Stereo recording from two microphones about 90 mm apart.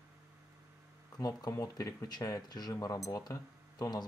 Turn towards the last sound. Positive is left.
turn(degrees=45)  # may be behind; listen again after turning